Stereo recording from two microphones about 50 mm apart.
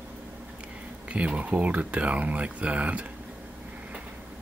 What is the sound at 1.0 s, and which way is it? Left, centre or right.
Speech, right.